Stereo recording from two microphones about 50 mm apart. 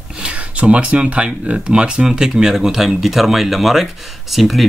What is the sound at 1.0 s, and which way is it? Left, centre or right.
Speech, right.